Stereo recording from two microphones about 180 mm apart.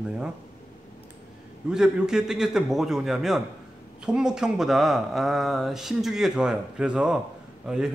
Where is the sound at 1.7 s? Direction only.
5° right (ahead or behind).